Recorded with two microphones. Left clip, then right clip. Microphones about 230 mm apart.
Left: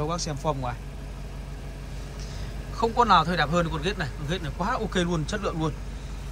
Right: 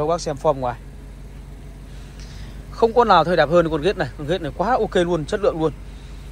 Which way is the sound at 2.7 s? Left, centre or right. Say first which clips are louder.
Right 6 dB; centre.